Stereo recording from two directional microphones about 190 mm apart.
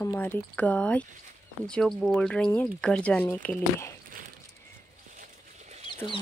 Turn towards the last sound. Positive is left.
turn(degrees=-40)  # may be behind; listen again after turning